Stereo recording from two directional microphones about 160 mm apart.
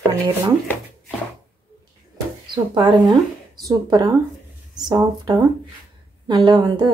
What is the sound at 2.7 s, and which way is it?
Speech, 30° right (ahead or behind).